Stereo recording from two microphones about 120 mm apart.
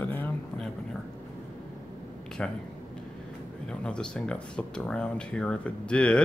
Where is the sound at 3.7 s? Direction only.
10° left (ahead or behind).